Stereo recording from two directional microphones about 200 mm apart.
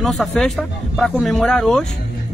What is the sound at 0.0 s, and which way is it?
Speech, centre (ahead or behind).